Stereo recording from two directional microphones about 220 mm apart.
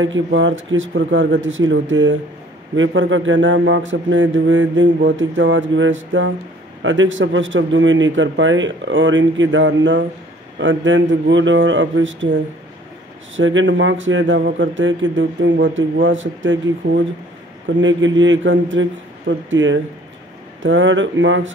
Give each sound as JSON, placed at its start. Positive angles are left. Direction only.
{"t": 0.0, "sound": "a man's voice", "side_deg": -60}
{"t": 13.4, "sound": "a man's voice", "side_deg": -60}